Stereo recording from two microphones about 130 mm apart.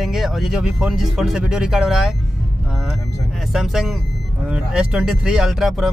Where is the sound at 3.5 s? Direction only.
Centre (ahead or behind).